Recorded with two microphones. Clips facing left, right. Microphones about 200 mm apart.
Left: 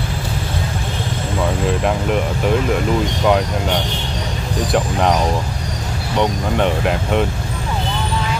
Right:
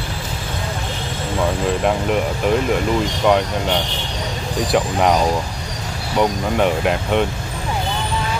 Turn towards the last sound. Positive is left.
turn(degrees=0)  # may be behind; listen again after turning